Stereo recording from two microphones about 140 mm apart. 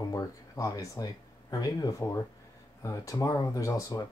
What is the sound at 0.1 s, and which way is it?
Speech, 25° left (ahead or behind).